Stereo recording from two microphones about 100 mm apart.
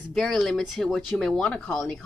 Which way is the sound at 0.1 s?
Centre (ahead or behind).